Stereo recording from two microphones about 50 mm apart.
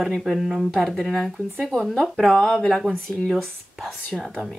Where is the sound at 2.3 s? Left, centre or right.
Centre.